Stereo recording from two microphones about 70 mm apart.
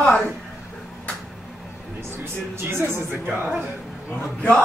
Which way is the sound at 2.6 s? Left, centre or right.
Right.